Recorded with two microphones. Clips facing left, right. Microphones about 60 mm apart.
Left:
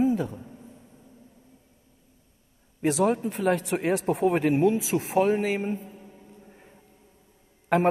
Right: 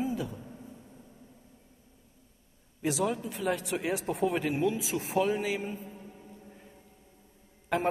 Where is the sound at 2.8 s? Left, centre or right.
Left.